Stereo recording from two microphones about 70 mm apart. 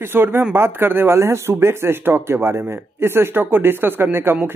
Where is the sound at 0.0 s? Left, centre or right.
Right.